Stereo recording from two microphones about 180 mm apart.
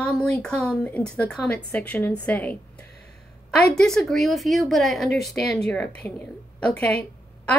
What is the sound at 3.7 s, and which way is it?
A woman's voice, 5° left (ahead or behind).